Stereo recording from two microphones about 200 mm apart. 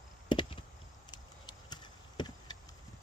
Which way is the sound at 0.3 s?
25° left (ahead or behind).